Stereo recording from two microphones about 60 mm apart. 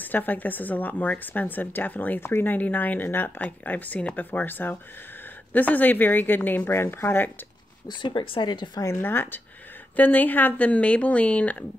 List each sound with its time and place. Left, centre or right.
0.0 s a woman's voice: left
9.0 s a woman's voice: left